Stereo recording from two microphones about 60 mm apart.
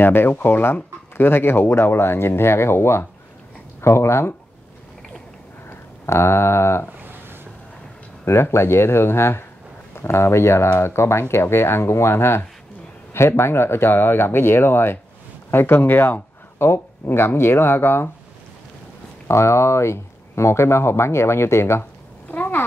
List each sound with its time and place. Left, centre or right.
0.0 s speech: left
5.7 s speech: left
8.3 s speech: left
19.2 s speech: left
22.3 s a sound: left